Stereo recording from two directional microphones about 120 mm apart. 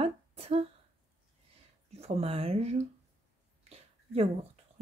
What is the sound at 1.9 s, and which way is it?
Speech, 60° right (ahead or behind).